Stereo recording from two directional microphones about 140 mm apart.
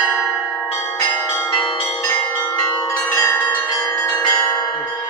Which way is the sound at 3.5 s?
20° left (ahead or behind).